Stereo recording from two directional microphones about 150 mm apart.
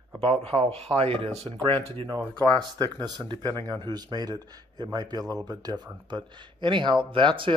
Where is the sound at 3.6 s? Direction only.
25° right (ahead or behind).